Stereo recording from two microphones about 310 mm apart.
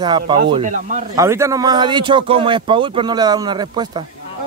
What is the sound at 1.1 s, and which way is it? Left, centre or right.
Speech, centre.